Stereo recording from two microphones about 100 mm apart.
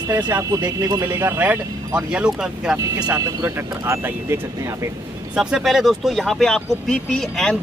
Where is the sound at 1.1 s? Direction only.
25° right (ahead or behind).